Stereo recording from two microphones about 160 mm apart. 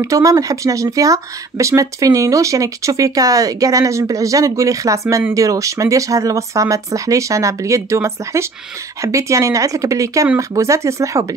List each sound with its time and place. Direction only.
0.0 s speech: 20° right (ahead or behind)